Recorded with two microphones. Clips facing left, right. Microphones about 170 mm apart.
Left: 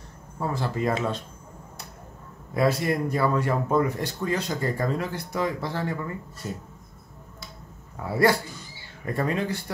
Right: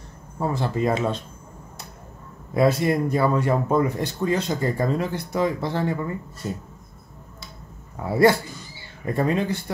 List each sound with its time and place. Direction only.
0.4 s speech: 25° right (ahead or behind)
2.5 s speech: 25° right (ahead or behind)
8.0 s speech: 25° right (ahead or behind)